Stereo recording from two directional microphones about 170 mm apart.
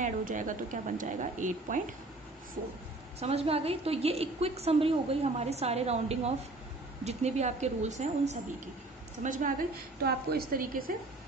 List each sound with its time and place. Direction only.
0.0 s speech: 50° right (ahead or behind)
3.2 s a woman's voice: 35° right (ahead or behind); by 10.9 s 55° right (ahead or behind)